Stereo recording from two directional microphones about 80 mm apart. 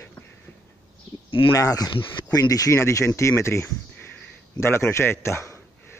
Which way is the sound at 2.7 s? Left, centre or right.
Left.